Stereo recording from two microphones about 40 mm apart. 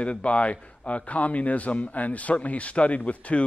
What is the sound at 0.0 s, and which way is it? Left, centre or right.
Speech, left.